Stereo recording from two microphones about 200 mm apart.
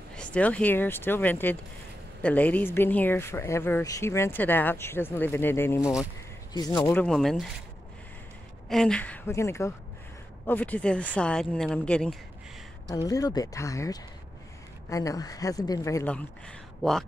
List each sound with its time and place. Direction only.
0.1 s speech: 5° left (ahead or behind)
8.6 s a woman's voice: 5° left (ahead or behind)
12.9 s speech: 15° left (ahead or behind)